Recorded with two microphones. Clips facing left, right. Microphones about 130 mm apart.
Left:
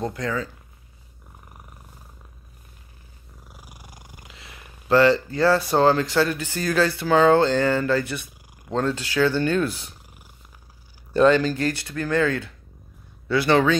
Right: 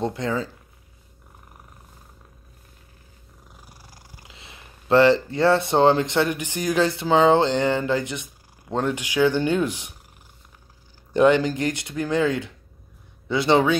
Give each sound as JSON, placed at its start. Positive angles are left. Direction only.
{"t": 0.0, "sound": "speech", "side_deg": -25}
{"t": 3.4, "sound": "purr", "side_deg": 10}
{"t": 4.3, "sound": "speech", "side_deg": -25}
{"t": 11.1, "sound": "speech", "side_deg": -15}